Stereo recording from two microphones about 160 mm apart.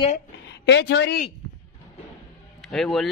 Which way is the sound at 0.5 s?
90° left.